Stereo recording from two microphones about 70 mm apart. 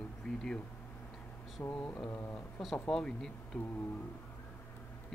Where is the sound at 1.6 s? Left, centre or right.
Left.